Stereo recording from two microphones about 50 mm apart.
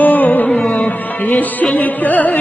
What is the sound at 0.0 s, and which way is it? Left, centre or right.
Music, left.